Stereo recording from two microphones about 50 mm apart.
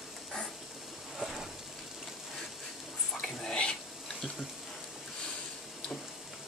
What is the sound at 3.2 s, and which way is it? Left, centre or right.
Whispering, centre.